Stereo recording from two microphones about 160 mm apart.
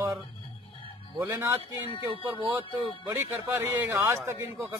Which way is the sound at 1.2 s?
15° right (ahead or behind).